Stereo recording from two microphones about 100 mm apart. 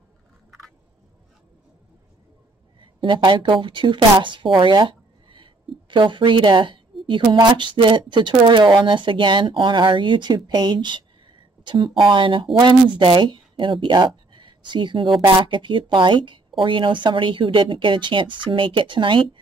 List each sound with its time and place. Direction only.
2.8 s speech: 55° right (ahead or behind)